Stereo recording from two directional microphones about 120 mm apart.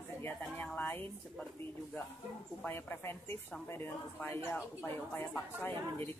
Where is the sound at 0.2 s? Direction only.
15° left (ahead or behind).